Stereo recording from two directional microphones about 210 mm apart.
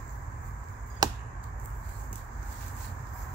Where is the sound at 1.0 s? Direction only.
20° right (ahead or behind).